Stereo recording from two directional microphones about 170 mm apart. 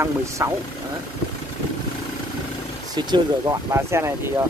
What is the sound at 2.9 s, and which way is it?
Speech, 25° right (ahead or behind).